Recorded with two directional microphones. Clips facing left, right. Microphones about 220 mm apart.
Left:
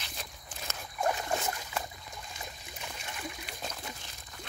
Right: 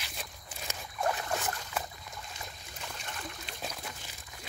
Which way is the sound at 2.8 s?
5° left (ahead or behind).